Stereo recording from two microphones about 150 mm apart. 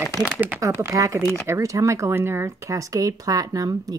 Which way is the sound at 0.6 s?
20° right (ahead or behind).